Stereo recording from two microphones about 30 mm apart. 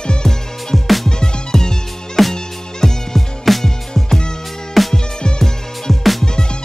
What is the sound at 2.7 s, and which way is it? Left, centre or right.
Music, centre.